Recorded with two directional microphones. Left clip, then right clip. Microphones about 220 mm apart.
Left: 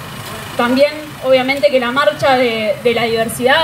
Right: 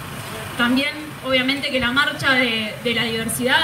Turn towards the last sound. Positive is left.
turn(degrees=-30)  # may be behind; listen again after turning